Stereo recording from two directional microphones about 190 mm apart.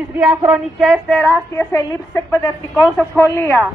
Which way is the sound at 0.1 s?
10° right (ahead or behind).